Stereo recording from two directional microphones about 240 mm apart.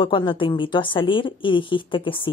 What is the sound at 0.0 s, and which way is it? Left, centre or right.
A woman's voice, left.